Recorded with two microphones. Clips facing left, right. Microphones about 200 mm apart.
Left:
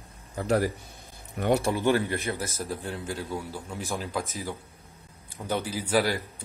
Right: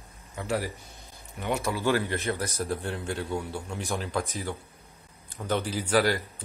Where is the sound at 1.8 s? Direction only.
15° left (ahead or behind).